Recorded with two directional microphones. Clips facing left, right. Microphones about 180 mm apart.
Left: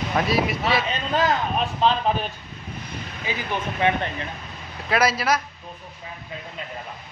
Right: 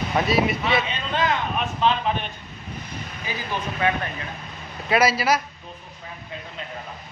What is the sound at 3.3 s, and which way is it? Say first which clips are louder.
Speech: left 2 dB; 20° left (ahead or behind).